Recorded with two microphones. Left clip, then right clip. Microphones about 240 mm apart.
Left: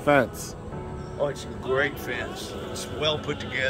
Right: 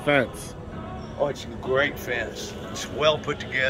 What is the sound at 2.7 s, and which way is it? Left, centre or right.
Speech, centre.